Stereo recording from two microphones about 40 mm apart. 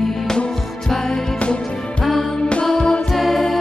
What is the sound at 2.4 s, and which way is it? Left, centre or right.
Music, left.